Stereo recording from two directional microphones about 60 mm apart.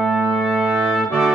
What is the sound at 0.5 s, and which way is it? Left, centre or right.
Trumpet, right.